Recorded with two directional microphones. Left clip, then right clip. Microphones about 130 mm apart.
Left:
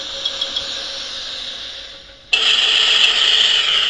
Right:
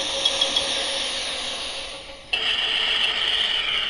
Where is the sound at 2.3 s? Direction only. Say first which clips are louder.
Left 8 dB; 25° left (ahead or behind).